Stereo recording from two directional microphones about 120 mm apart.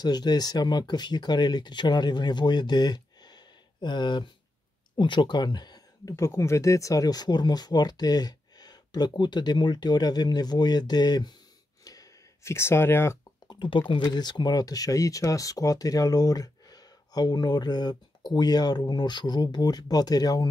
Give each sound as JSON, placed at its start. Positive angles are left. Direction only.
{"t": 0.0, "sound": "speech", "side_deg": 35}
{"t": 11.8, "sound": "a sound", "side_deg": 30}
{"t": 13.5, "sound": "speech", "side_deg": 40}